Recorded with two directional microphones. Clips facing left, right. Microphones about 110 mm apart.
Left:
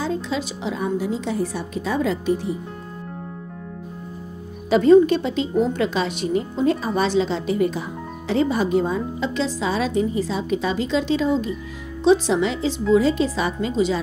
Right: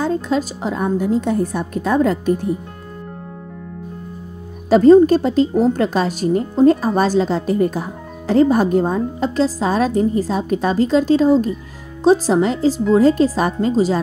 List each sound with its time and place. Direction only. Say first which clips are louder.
0.0 s a woman's voice: right 6 dB; 45° right (ahead or behind)
4.6 s a woman's voice: right 4 dB; 40° right (ahead or behind)